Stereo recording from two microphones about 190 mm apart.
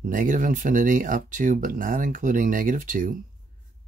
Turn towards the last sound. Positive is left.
turn(degrees=-45)  # may be behind; listen again after turning